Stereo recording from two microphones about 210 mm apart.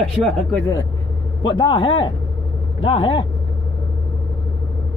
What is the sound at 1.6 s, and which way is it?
Speech, 25° left (ahead or behind).